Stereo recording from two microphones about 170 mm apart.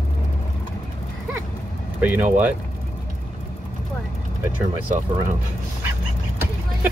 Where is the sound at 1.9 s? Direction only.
10° right (ahead or behind).